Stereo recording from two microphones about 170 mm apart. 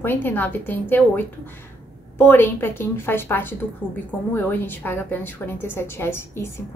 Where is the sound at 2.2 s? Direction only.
15° left (ahead or behind).